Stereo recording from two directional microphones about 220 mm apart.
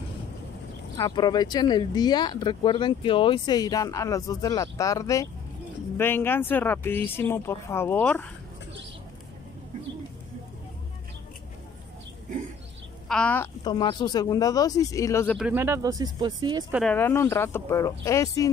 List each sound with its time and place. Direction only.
0.9 s speech: 20° left (ahead or behind)
13.1 s a woman's voice: 5° left (ahead or behind)
13.7 s speech: 20° left (ahead or behind)
15.3 s speech: 5° right (ahead or behind)
16.9 s speech: 10° left (ahead or behind)